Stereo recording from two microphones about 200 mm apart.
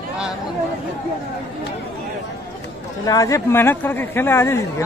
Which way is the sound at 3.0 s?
15° left (ahead or behind).